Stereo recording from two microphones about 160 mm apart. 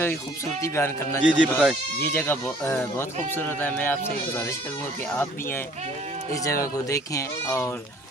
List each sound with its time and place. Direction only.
0.0 s speech: 15° left (ahead or behind)
1.2 s speech: 5° right (ahead or behind)
2.1 s speech: 10° left (ahead or behind)
5.1 s speech: 15° left (ahead or behind)